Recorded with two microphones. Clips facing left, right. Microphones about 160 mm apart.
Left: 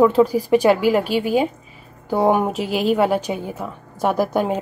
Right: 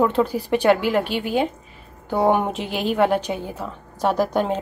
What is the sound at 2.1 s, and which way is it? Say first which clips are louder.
A woman's voice: left 2 dB; 5° left (ahead or behind).